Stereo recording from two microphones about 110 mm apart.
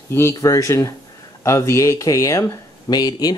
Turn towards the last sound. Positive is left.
turn(degrees=35)  # may be behind; listen again after turning